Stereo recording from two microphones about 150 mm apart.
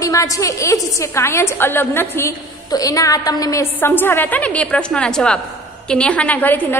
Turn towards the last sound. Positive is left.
turn(degrees=10)  # may be behind; listen again after turning